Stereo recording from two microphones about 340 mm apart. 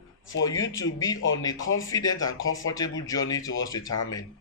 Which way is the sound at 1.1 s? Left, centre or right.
Left.